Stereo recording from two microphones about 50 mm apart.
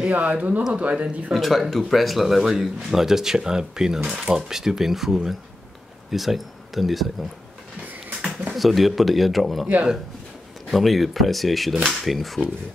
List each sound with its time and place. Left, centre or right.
0.0 s speech: right
1.3 s speech: centre
8.5 s speech: centre
10.7 s speech: centre